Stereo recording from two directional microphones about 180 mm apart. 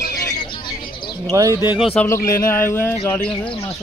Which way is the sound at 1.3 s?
20° right (ahead or behind).